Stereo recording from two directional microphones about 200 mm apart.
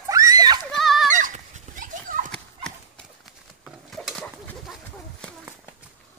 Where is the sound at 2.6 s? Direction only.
Centre (ahead or behind).